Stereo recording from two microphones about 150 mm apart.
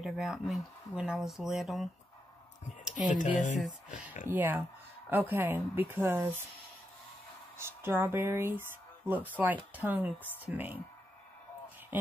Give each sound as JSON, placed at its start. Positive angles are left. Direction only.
{"t": 0.0, "sound": "speech", "side_deg": 0}
{"t": 3.1, "sound": "speech", "side_deg": 55}
{"t": 4.3, "sound": "speech", "side_deg": -15}
{"t": 7.5, "sound": "speech", "side_deg": -15}